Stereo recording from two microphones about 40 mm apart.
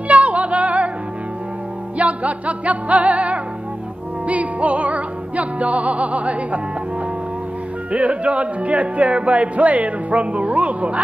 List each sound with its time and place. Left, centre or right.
0.1 s music: right
2.0 s music: right
7.9 s music: right